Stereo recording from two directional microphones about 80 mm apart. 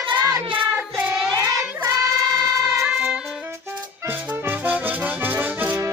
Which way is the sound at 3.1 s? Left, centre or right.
Centre.